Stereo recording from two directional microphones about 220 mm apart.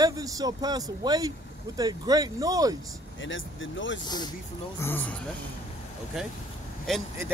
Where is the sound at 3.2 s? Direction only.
60° left (ahead or behind).